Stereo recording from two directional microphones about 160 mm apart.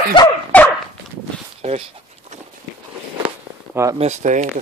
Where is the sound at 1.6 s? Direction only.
45° right (ahead or behind).